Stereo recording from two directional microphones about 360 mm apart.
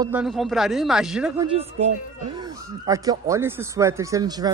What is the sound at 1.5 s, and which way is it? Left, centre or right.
Speech, centre.